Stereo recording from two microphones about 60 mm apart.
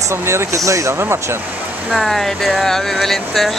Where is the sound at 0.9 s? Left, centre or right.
Right.